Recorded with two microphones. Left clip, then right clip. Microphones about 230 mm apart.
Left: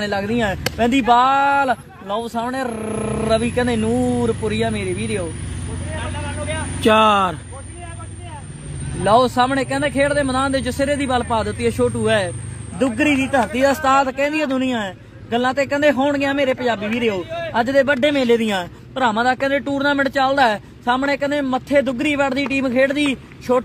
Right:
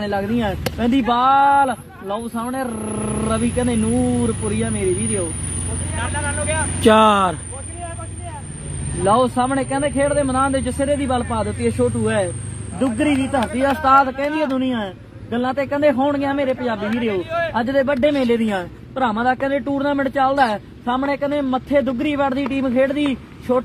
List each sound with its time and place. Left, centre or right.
0.0 s speech: left
5.9 s vehicle: right
6.8 s speech: centre
9.0 s speech: left